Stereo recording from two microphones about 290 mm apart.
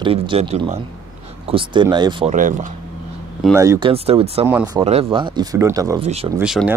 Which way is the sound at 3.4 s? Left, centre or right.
Centre.